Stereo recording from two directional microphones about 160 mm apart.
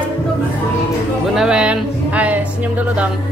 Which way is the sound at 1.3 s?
5° right (ahead or behind).